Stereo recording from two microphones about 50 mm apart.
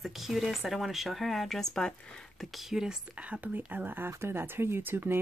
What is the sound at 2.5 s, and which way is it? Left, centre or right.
Speech, centre.